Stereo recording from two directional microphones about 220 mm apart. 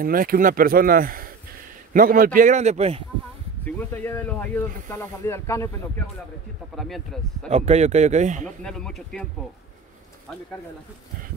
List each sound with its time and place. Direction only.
0.0 s speech: 40° right (ahead or behind)
3.6 s speech: 10° left (ahead or behind)
7.4 s speech: 30° right (ahead or behind)
8.6 s speech: centre (ahead or behind)